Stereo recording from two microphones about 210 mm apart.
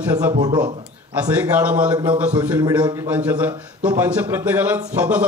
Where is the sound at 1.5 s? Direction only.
5° right (ahead or behind).